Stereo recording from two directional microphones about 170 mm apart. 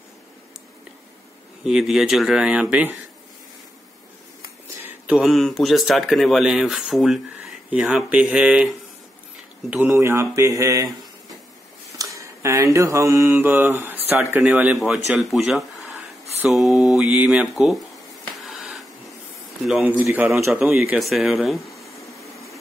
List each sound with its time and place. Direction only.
1.6 s a man's voice: 5° right (ahead or behind)
4.4 s speech: 10° right (ahead or behind)
12.0 s mantra: 15° right (ahead or behind)
15.1 s a man's voice: 5° right (ahead or behind)
18.4 s a sound: 5° right (ahead or behind)
19.6 s a man's voice: 5° right (ahead or behind)